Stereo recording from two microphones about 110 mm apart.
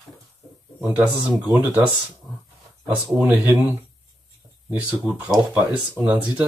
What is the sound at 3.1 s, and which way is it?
Speech, 15° right (ahead or behind).